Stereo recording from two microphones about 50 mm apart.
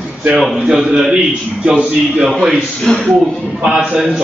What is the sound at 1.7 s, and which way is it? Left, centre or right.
Speech, right.